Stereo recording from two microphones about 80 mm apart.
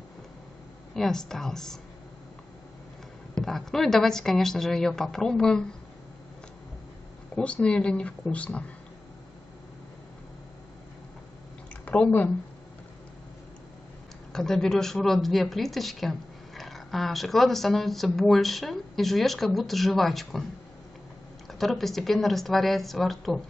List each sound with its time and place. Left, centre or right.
0.9 s speech: centre
3.3 s speech: centre
7.3 s speech: centre
11.7 s a sound: centre
14.3 s speech: centre
21.5 s speech: centre